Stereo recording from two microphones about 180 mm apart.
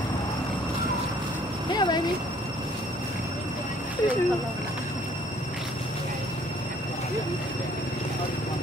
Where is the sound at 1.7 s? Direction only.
25° left (ahead or behind).